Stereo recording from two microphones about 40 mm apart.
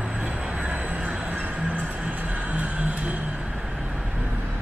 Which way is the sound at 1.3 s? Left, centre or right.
Right.